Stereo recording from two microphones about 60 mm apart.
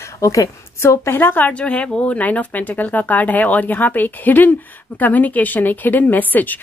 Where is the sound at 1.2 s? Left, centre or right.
Left.